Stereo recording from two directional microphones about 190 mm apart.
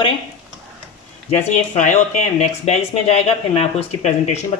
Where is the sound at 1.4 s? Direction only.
40° left (ahead or behind).